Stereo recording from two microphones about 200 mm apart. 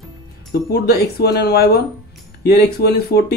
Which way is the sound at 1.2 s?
55° left (ahead or behind).